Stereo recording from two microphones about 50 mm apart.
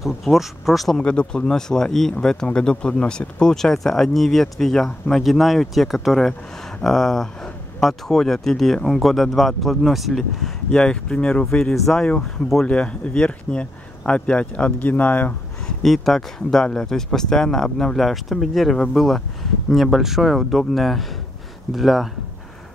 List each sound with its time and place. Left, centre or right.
0.0 s speech: centre
1.0 s speech: left; by 10.8 s centre
10.8 s speech: centre
11.7 s speech: centre
12.0 s speech: centre; by 15.3 s left
15.8 s speech: centre